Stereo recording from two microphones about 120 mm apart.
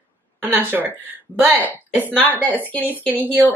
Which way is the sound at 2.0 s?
15° left (ahead or behind).